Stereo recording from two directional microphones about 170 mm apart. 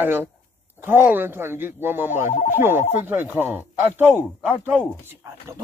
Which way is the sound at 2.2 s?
50° left (ahead or behind).